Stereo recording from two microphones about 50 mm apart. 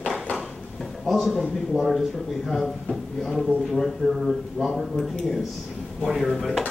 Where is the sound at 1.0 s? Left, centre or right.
Centre.